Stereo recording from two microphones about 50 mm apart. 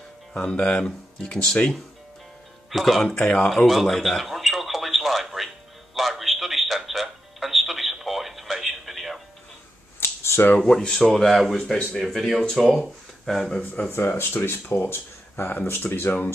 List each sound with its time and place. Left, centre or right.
0.3 s speech: centre
2.7 s speech: centre
3.4 s radio: centre
5.9 s music: centre
10.7 s speech: centre
11.1 s speech: centre
13.8 s speech: left
14.1 s speech: left